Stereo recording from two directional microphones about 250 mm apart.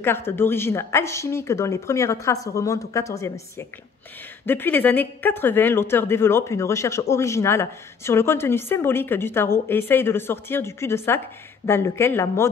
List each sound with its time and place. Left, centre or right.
0.0 s speech: centre